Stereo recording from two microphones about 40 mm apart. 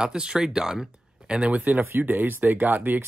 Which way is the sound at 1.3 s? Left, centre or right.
Right.